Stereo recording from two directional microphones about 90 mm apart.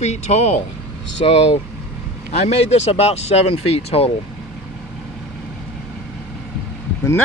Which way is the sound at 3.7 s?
90° left.